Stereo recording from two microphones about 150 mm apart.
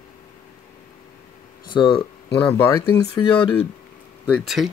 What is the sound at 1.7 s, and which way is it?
Speech, 35° left (ahead or behind).